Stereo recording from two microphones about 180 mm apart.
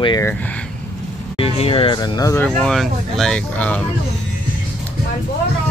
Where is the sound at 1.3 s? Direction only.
35° left (ahead or behind).